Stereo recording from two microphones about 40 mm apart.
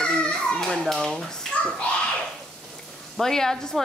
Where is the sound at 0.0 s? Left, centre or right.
Left.